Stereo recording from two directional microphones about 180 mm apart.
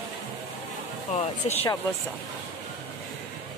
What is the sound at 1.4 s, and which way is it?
Speech, 35° left (ahead or behind).